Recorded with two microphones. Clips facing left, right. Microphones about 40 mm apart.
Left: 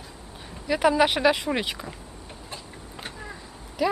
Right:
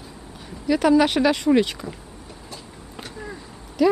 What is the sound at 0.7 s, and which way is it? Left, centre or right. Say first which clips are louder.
Speech: right 3 dB; centre.